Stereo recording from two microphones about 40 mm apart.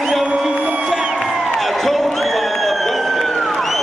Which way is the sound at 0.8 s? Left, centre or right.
Centre.